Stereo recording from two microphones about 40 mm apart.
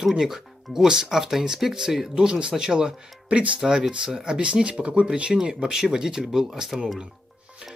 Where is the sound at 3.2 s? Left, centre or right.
Right.